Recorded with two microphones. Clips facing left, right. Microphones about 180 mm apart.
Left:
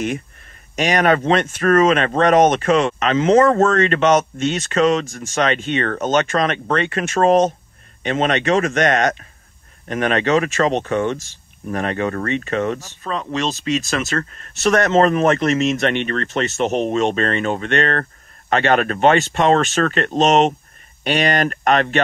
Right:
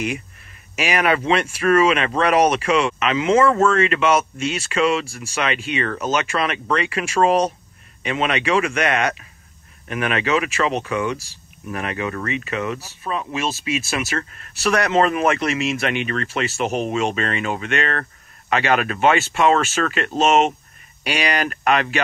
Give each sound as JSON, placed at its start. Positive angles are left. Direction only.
{"t": 0.7, "sound": "speech", "side_deg": 40}
{"t": 13.0, "sound": "speech", "side_deg": -15}
{"t": 14.4, "sound": "speech", "side_deg": 40}